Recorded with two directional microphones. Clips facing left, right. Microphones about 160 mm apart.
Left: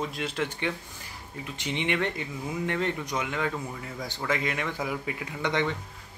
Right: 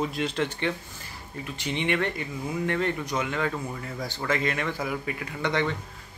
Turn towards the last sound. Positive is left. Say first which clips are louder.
# right 1 dB
turn(degrees=15)  # may be behind; listen again after turning